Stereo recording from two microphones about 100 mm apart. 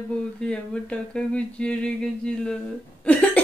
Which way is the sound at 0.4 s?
10° left (ahead or behind).